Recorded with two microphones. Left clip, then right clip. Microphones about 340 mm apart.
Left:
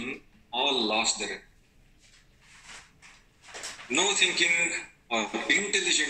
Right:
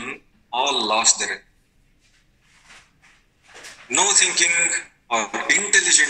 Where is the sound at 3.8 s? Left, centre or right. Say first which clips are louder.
Right 6 dB; right.